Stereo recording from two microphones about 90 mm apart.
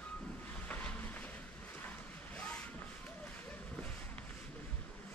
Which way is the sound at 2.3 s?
10° left (ahead or behind).